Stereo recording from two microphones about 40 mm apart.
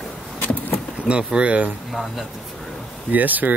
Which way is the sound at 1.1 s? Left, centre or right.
Right.